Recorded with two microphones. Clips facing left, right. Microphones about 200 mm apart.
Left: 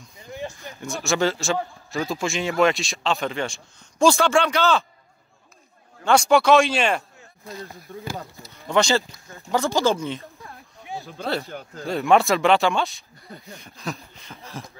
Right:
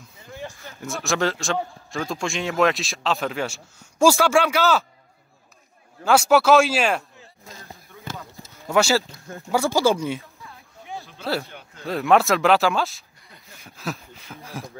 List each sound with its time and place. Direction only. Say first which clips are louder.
0.2 s a sound: left 3 dB; 15° left (ahead or behind)
0.7 s a man's voice: left 1 dB; centre (ahead or behind)
6.0 s a man's voice: even; 5° right (ahead or behind)
8.6 s speech: right 1 dB; 5° right (ahead or behind)
11.4 s speech: left 7 dB; 40° left (ahead or behind)
11.8 s a man's voice: even; centre (ahead or behind)